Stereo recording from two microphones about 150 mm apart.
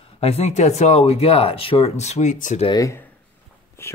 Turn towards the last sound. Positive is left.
turn(degrees=15)  # may be behind; listen again after turning